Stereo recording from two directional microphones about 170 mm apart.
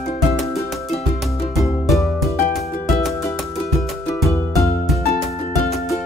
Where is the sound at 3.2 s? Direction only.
20° left (ahead or behind).